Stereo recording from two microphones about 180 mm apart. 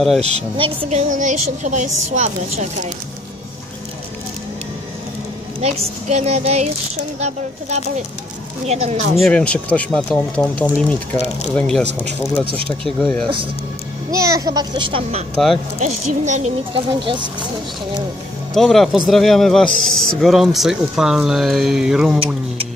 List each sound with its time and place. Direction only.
0.6 s speech: 40° right (ahead or behind)
5.6 s speech: 35° right (ahead or behind)
9.2 s a man's voice: 5° left (ahead or behind)
12.4 s speech: 30° right (ahead or behind)
12.8 s a man's voice: 5° left (ahead or behind)
14.1 s a child's voice: 15° right (ahead or behind); by 15.2 s 35° right (ahead or behind)
15.3 s a man's voice: centre (ahead or behind)
15.8 s speech: 40° right (ahead or behind)
18.5 s a man's voice: centre (ahead or behind)